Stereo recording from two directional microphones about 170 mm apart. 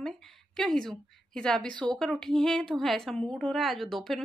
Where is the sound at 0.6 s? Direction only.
5° left (ahead or behind).